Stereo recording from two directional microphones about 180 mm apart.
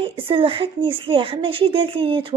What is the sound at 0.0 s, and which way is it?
Speech, 30° right (ahead or behind).